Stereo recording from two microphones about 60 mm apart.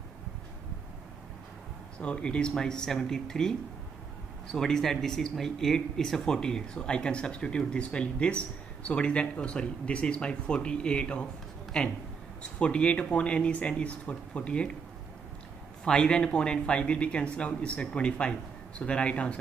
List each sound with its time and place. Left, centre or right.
2.0 s speech: centre
15.8 s speech: centre